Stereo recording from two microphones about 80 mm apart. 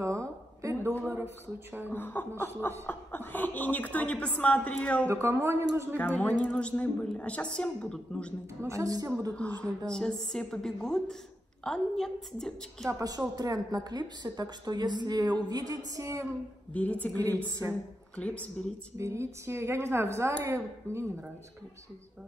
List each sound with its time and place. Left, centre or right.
0.0 s a sound: right
1.1 s speech: right
1.9 s a woman's voice: left
5.1 s a woman's voice: right
5.9 s a woman's voice: centre
8.6 s a woman's voice: right
9.3 s a woman's voice: centre
12.8 s a woman's voice: right
16.7 s a woman's voice: centre
18.9 s a woman's voice: right